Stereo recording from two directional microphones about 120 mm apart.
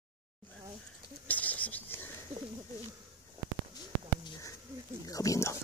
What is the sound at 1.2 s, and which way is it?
Rodents, 15° left (ahead or behind).